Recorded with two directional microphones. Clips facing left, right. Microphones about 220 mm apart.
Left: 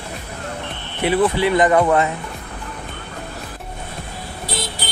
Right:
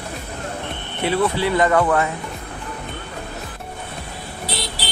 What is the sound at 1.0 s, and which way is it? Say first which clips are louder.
Speech: left 3 dB; 15° left (ahead or behind).